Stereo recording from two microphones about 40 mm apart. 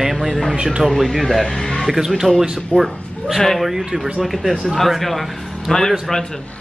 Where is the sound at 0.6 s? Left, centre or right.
Right.